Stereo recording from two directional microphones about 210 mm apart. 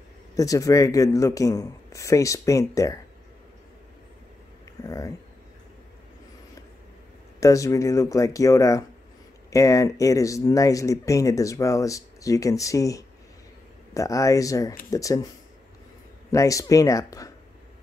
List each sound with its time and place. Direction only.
0.4 s speech: 15° left (ahead or behind)
4.8 s speech: 15° left (ahead or behind)
7.3 s speech: 15° left (ahead or behind)
16.3 s speech: 15° left (ahead or behind)